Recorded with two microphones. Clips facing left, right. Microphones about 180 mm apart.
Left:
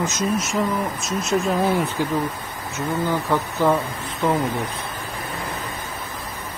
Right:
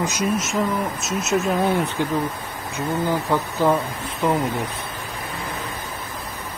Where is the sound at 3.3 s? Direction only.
10° right (ahead or behind).